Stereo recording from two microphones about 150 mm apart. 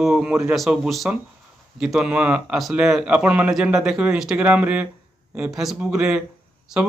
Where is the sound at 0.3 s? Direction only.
15° right (ahead or behind).